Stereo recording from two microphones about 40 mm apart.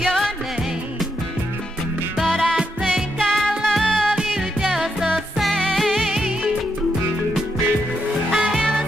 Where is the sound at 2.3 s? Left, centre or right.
Centre.